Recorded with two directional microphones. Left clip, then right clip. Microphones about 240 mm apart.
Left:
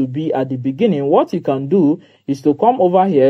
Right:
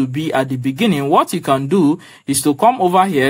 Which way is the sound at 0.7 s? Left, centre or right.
Right.